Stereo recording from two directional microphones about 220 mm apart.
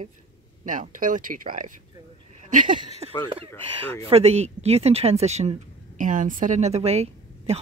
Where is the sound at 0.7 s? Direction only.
35° right (ahead or behind).